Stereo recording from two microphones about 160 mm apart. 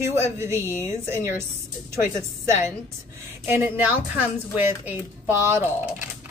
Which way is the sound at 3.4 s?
15° right (ahead or behind).